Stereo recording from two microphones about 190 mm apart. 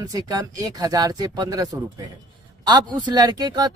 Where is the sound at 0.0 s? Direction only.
20° right (ahead or behind).